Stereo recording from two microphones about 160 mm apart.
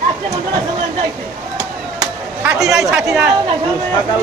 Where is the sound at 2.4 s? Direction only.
5° right (ahead or behind).